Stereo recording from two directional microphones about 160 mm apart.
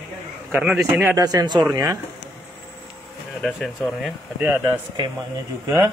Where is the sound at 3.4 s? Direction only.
Centre (ahead or behind).